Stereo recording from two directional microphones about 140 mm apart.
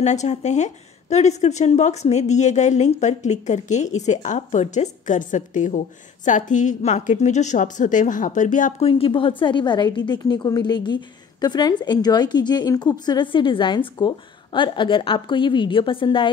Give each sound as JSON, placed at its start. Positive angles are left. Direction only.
{"t": 0.0, "sound": "a woman's voice", "side_deg": 55}
{"t": 8.8, "sound": "a woman's voice", "side_deg": 40}